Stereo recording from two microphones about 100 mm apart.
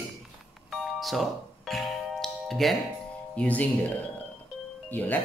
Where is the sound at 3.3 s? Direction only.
15° left (ahead or behind).